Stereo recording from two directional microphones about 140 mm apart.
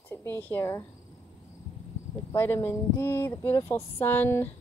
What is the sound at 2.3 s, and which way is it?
Speech, 20° left (ahead or behind).